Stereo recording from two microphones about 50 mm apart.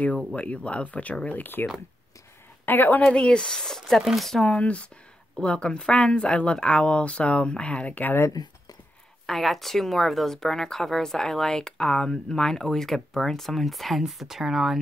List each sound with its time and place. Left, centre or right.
0.4 s a woman's voice: left
3.1 s speech: centre
4.0 s speech: centre
4.5 s speech: left
9.2 s speech: centre